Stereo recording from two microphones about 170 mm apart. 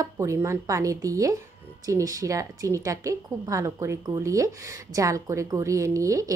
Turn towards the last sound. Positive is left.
turn(degrees=-20)  # may be behind; listen again after turning